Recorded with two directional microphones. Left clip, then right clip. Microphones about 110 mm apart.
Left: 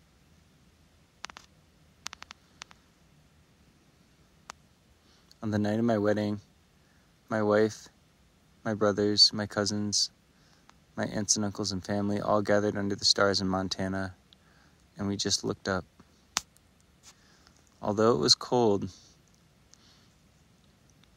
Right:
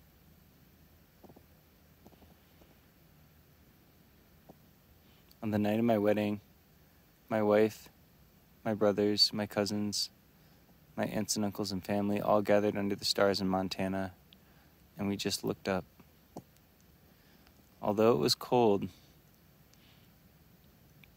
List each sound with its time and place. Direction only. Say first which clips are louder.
5.4 s speech: left 2 dB; 30° left (ahead or behind)
11.0 s speech: left 4 dB; 30° left (ahead or behind)
17.7 s speech: left 2 dB; 30° left (ahead or behind)